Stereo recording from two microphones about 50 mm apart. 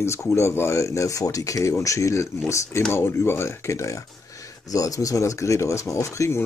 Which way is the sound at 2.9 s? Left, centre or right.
Left.